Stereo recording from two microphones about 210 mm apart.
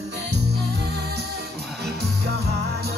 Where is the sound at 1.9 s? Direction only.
50° right (ahead or behind).